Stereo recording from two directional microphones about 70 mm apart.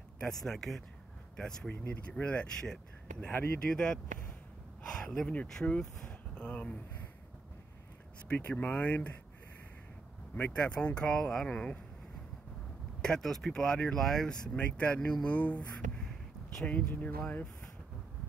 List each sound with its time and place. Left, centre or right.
0.3 s speech: centre
8.3 s speech: left
10.3 s speech: centre
13.0 s speech: centre; by 17.5 s left